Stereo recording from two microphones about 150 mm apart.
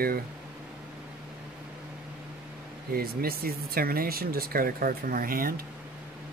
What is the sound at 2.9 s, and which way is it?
Speech, 80° right.